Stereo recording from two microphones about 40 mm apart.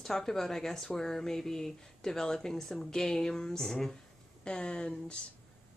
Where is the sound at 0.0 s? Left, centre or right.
Centre.